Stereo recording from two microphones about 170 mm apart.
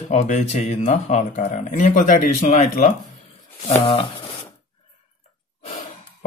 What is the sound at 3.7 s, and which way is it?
Speech, 35° left (ahead or behind).